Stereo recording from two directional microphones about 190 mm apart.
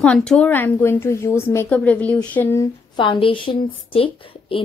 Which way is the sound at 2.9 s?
25° left (ahead or behind).